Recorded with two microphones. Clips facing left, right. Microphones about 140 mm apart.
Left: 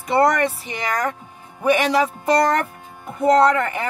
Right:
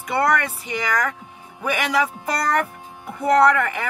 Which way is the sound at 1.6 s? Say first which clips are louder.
Left 4 dB; 30° left (ahead or behind).